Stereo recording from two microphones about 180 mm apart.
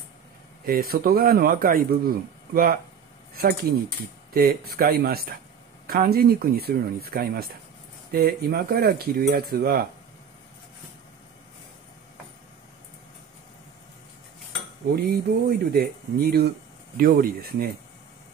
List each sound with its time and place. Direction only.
0.7 s speech: 55° right (ahead or behind)
15.0 s speech: 60° right (ahead or behind)